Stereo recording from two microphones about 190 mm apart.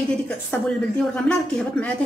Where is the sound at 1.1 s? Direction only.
5° left (ahead or behind).